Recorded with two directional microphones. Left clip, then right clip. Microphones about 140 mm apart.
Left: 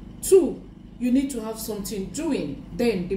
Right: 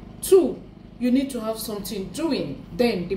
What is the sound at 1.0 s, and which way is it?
A woman's voice, 15° right (ahead or behind).